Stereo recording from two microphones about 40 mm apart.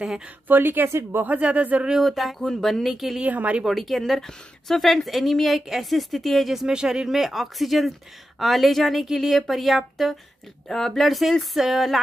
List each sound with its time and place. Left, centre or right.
0.5 s speech: right
1.4 s speech: right
2.0 s speech: centre
3.3 s speech: right
3.6 s speech: centre
6.7 s speech: centre
7.2 s speech: centre